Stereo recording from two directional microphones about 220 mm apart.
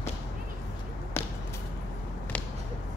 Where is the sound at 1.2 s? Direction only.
25° left (ahead or behind).